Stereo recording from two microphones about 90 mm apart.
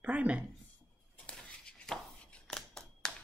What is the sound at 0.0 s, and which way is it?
Speech, 15° right (ahead or behind).